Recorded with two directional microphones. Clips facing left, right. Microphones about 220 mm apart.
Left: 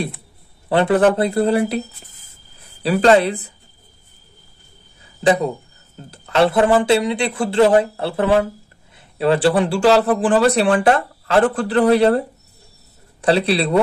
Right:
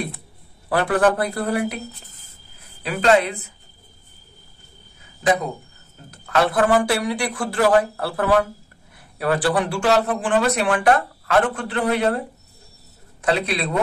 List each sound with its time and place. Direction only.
0.7 s speech: 25° left (ahead or behind)
2.8 s a man's voice: 35° left (ahead or behind)
5.2 s a man's voice: 30° left (ahead or behind)
13.2 s a man's voice: 30° left (ahead or behind)